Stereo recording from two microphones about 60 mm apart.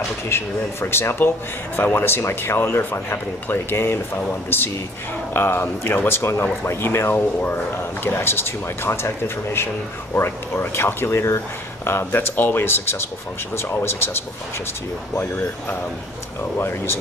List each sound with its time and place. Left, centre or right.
0.3 s speech: left
16.5 s speech: left